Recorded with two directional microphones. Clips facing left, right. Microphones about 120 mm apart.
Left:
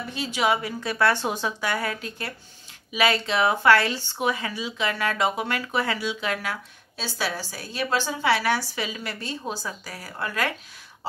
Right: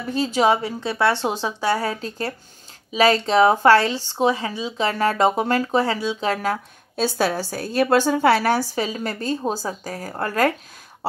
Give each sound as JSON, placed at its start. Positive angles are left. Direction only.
{"t": 0.1, "sound": "speech", "side_deg": -40}